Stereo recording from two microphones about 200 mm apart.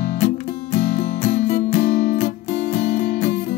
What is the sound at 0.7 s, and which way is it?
Music, 35° left (ahead or behind).